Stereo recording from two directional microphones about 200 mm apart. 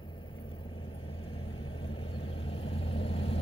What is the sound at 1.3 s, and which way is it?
Vehicle, 25° left (ahead or behind).